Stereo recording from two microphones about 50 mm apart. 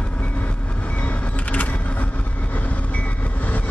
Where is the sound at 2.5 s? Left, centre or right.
Left.